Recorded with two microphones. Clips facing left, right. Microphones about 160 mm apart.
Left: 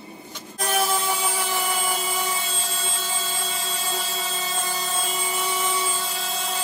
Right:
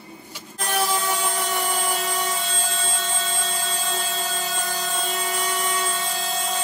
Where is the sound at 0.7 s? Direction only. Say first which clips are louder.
Even; 5° left (ahead or behind).